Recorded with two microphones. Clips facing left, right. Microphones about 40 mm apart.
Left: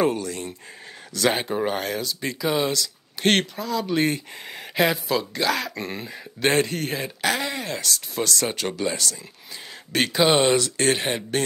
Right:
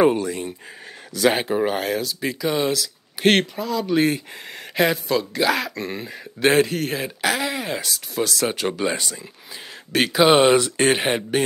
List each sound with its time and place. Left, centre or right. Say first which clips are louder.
0.0 s speech: right 5 dB; centre
9.9 s speech: right 4 dB; centre